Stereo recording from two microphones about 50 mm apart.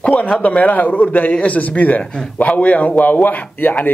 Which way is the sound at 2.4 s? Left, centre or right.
Left.